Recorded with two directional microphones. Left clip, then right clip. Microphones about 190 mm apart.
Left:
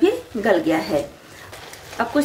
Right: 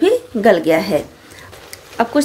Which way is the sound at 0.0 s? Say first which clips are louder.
Right 6 dB; 50° right (ahead or behind).